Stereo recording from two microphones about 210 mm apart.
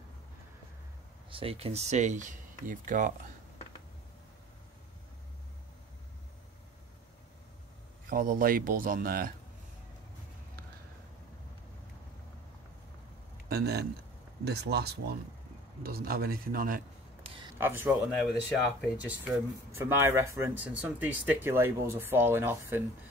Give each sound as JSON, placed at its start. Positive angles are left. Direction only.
{"t": 1.3, "sound": "speech", "side_deg": -25}
{"t": 8.1, "sound": "speech", "side_deg": -40}
{"t": 13.5, "sound": "speech", "side_deg": -50}
{"t": 17.2, "sound": "a sound", "side_deg": -25}
{"t": 17.6, "sound": "speech", "side_deg": -10}